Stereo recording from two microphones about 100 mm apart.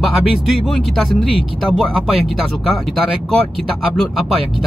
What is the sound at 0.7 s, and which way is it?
Speech, 5° left (ahead or behind).